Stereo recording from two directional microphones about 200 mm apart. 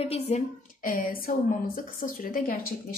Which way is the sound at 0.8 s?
45° left (ahead or behind).